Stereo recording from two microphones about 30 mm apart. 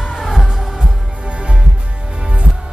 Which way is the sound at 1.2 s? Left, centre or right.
Right.